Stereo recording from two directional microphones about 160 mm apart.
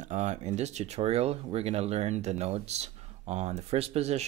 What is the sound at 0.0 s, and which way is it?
Speech, 50° right (ahead or behind).